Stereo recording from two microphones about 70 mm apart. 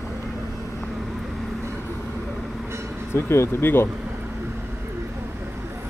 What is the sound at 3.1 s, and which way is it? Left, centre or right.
Speech, left.